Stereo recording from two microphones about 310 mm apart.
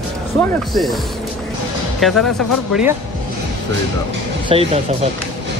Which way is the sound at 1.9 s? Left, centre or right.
Centre.